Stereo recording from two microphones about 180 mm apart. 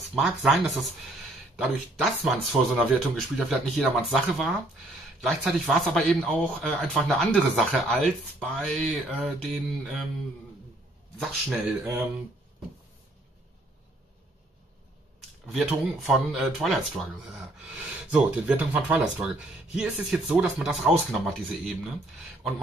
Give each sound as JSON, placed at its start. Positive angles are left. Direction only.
{"t": 0.1, "sound": "speech", "side_deg": 0}
{"t": 2.1, "sound": "speech", "side_deg": -5}
{"t": 11.1, "sound": "speech", "side_deg": 0}
{"t": 15.1, "sound": "a sound", "side_deg": 0}
{"t": 16.1, "sound": "speech", "side_deg": 0}